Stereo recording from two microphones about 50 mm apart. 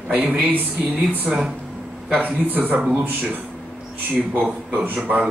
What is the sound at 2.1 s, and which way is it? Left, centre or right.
Speech, right.